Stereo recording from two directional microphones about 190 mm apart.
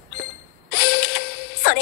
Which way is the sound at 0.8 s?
75° left (ahead or behind).